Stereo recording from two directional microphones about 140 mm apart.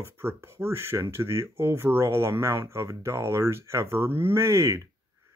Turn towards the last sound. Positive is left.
turn(degrees=-20)  # may be behind; listen again after turning